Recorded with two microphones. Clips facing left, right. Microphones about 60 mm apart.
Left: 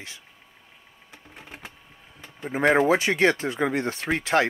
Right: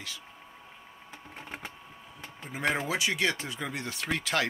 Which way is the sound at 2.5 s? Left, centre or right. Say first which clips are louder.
Left 10 dB; left.